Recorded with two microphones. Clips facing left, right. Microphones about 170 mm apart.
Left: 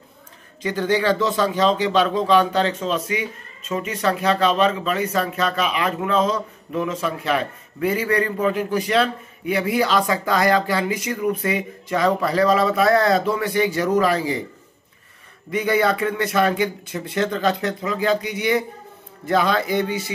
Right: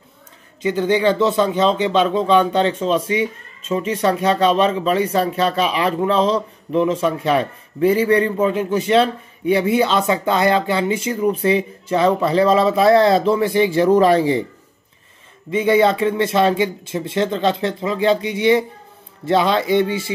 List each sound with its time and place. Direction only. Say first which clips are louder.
0.7 s speech: right 3 dB; 20° right (ahead or behind)
15.5 s speech: right 5 dB; 25° right (ahead or behind)